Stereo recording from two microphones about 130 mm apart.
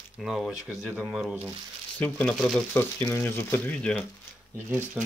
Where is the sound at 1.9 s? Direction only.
10° left (ahead or behind).